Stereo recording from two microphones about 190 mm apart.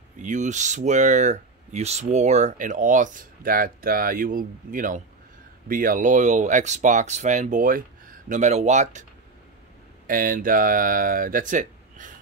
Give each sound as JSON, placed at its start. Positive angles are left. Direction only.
{"t": 0.2, "sound": "speech", "side_deg": -40}
{"t": 10.0, "sound": "speech", "side_deg": -45}